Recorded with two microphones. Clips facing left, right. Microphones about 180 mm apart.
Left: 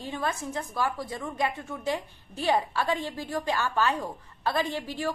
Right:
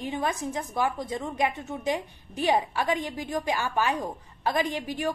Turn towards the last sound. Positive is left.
turn(degrees=-15)  # may be behind; listen again after turning